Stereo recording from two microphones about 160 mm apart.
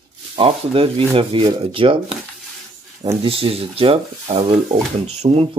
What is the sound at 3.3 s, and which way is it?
Speech, 35° right (ahead or behind).